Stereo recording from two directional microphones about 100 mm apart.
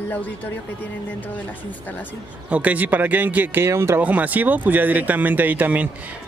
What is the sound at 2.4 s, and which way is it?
Speech, 15° right (ahead or behind).